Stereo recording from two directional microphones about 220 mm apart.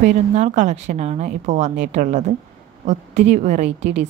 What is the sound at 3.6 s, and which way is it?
Speech, 50° right (ahead or behind).